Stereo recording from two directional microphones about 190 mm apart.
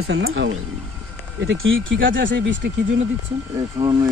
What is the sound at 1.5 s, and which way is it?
Speech, 85° right.